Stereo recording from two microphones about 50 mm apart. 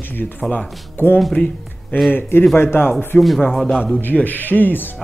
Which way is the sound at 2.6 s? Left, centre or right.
Left.